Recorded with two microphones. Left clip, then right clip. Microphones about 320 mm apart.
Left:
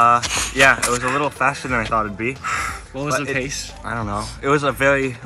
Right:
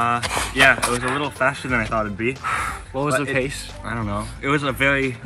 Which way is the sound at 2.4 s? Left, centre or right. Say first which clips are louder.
Even; centre.